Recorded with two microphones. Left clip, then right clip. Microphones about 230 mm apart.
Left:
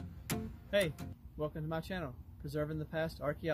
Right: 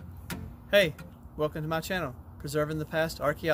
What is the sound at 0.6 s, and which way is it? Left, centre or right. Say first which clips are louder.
Speech: right 10 dB; centre.